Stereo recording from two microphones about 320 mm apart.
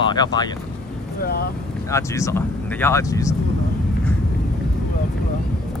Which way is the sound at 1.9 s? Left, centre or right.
Centre.